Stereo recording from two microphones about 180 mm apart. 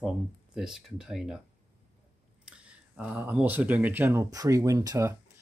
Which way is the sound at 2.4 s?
5° right (ahead or behind).